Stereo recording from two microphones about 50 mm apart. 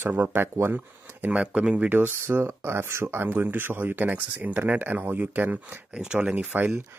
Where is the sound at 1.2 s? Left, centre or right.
Right.